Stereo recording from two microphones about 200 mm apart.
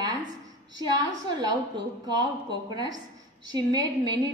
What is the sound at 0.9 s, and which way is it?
A woman's voice, 20° right (ahead or behind).